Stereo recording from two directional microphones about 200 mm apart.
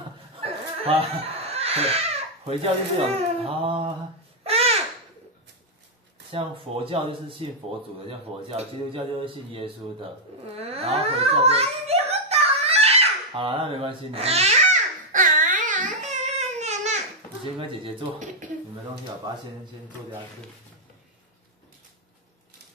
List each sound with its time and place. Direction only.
0.4 s speech: 30° right (ahead or behind)
4.5 s babbling: 30° right (ahead or behind)
6.3 s a man's voice: 25° right (ahead or behind)
8.5 s a man's voice: 30° right (ahead or behind)
10.6 s a sound: 30° right (ahead or behind)
17.6 s a man's voice: 25° right (ahead or behind)